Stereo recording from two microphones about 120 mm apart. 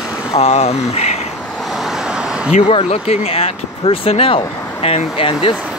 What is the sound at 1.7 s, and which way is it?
Vehicle, centre (ahead or behind).